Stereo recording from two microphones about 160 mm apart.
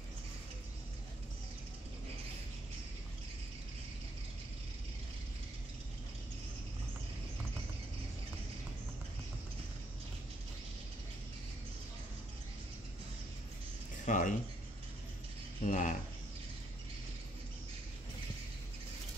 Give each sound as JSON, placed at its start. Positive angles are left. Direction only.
{"t": 14.0, "sound": "speech", "side_deg": 50}
{"t": 15.6, "sound": "speech", "side_deg": 55}